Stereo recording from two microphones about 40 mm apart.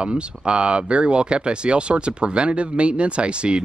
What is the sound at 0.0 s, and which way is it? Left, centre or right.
Speech, right.